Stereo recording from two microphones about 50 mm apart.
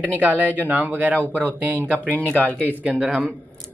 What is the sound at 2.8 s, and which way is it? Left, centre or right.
Speech, right.